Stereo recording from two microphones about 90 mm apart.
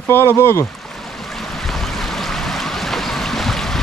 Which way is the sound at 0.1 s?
30° left (ahead or behind).